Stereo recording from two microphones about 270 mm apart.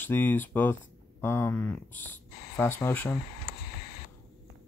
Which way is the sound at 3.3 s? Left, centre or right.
Left.